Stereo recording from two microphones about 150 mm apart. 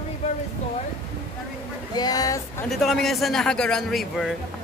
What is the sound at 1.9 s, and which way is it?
Speech, 25° left (ahead or behind).